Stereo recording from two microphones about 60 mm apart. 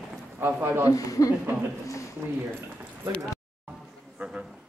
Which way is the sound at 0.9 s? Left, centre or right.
Left.